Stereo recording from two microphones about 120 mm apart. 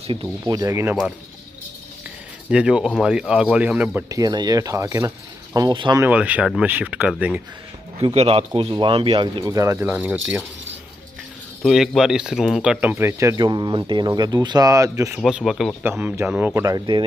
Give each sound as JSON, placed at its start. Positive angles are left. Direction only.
{"t": 0.5, "sound": "speech", "side_deg": -30}
{"t": 2.5, "sound": "speech", "side_deg": -10}
{"t": 4.1, "sound": "speech", "side_deg": -35}
{"t": 5.7, "sound": "speech", "side_deg": -40}
{"t": 5.9, "sound": "speech", "side_deg": -15}
{"t": 8.0, "sound": "speech", "side_deg": -55}
{"t": 9.5, "sound": "speech", "side_deg": -25}
{"t": 9.8, "sound": "speech", "side_deg": -10}
{"t": 11.6, "sound": "speech", "side_deg": 0}
{"t": 12.8, "sound": "speech", "side_deg": -20}
{"t": 13.4, "sound": "speech", "side_deg": -35}
{"t": 15.1, "sound": "speech", "side_deg": -5}
{"t": 15.8, "sound": "speech", "side_deg": -15}
{"t": 16.6, "sound": "speech", "side_deg": -35}